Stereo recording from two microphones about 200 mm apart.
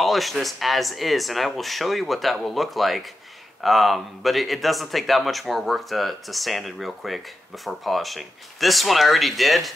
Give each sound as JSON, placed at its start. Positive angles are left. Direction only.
{"t": 0.0, "sound": "speech", "side_deg": 0}